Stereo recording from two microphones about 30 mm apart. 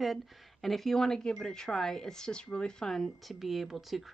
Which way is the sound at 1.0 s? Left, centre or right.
Left.